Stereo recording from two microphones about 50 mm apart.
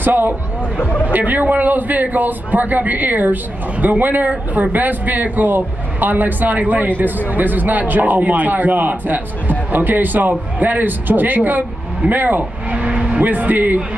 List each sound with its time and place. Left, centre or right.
0.0 s speech: right
0.7 s speech: left
1.0 s a man's voice: right
12.7 s vehicle: right
13.2 s a man's voice: right